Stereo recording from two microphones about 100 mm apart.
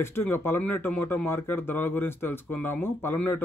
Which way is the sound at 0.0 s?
25° left (ahead or behind).